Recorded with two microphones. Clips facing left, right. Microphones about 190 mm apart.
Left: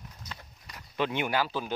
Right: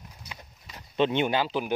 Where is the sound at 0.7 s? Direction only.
25° right (ahead or behind).